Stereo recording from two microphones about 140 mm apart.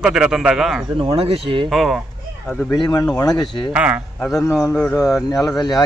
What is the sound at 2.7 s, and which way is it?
Speech, 30° left (ahead or behind).